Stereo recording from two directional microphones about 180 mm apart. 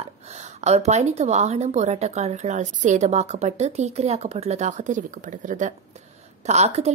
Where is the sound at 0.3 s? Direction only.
40° right (ahead or behind).